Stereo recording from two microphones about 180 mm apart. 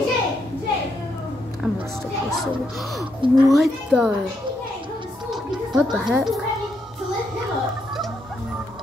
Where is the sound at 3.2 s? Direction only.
25° right (ahead or behind).